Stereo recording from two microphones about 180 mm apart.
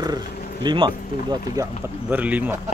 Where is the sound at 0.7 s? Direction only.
25° right (ahead or behind); by 2.6 s 10° right (ahead or behind).